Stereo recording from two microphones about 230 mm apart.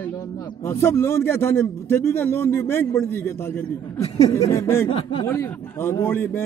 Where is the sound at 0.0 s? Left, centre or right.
Centre.